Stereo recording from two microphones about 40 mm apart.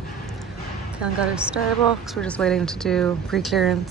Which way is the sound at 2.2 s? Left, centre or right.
Left.